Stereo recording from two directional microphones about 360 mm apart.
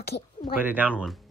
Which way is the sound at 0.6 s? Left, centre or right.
Centre.